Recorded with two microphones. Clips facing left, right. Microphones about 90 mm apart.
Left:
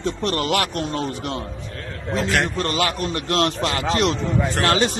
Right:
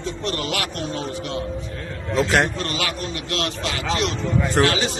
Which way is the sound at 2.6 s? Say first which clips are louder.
Left 4 dB; 40° left (ahead or behind).